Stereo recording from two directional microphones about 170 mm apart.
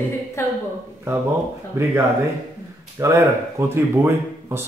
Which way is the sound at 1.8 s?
15° right (ahead or behind).